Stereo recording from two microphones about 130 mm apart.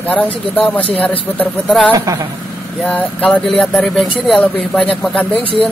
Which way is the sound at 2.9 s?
10° left (ahead or behind).